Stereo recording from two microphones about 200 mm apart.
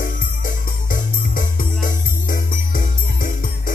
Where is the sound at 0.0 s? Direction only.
45° left (ahead or behind).